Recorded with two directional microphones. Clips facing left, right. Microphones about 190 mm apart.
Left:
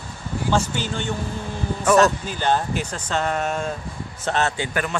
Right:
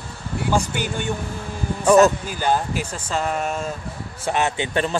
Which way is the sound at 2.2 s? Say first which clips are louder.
Even; 10° right (ahead or behind).